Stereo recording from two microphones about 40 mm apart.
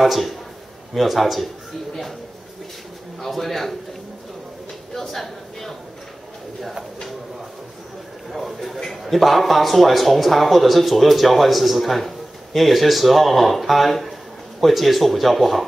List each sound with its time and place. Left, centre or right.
0.0 s a man's voice: centre
3.2 s a man's voice: centre
4.9 s speech: centre
8.3 s a man's voice: centre